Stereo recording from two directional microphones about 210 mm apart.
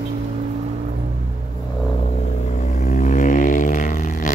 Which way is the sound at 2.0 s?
35° left (ahead or behind).